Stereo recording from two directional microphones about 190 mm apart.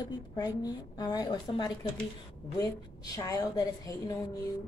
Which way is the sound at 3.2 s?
15° left (ahead or behind).